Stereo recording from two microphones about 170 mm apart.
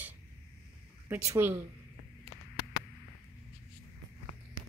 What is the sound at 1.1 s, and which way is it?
Speech, 15° right (ahead or behind).